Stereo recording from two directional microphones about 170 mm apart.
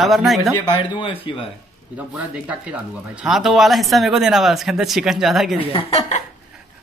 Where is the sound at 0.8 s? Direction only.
30° left (ahead or behind).